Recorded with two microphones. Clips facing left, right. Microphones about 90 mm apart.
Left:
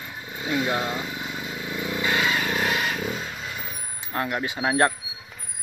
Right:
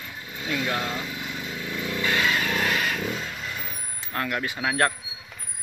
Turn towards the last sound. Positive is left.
turn(degrees=25)  # may be behind; listen again after turning